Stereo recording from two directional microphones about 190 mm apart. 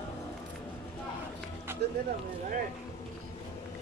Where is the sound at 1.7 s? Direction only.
10° right (ahead or behind).